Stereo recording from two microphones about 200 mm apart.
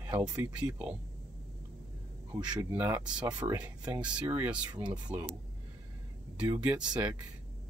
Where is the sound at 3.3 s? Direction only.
20° right (ahead or behind).